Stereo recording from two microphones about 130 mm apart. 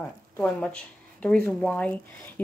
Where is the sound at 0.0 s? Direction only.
10° left (ahead or behind).